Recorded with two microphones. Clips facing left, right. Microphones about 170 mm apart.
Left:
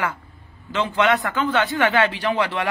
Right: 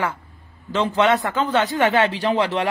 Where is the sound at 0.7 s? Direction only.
30° right (ahead or behind).